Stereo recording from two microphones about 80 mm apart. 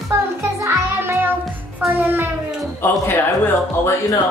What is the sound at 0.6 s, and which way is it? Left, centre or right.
Music, right.